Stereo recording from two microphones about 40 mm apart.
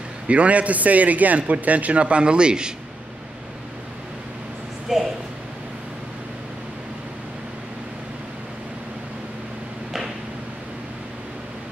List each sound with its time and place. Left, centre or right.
0.3 s a man's voice: right
4.9 s speech: centre